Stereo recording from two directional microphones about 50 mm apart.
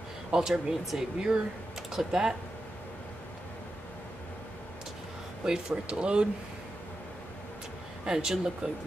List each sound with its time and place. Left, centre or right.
0.3 s speech: centre
5.4 s speech: centre
8.0 s speech: centre